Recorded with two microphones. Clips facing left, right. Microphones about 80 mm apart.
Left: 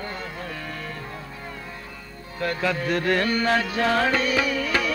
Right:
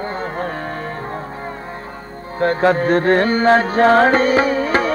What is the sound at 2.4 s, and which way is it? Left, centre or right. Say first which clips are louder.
Music: right 10 dB; right.